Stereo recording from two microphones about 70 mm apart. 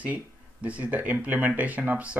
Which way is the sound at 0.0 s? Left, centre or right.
Right.